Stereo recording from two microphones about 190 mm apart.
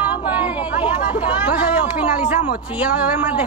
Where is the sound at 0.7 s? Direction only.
10° right (ahead or behind).